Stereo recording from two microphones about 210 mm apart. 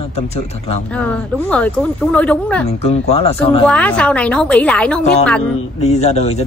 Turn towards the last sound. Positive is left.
turn(degrees=30)  # may be behind; listen again after turning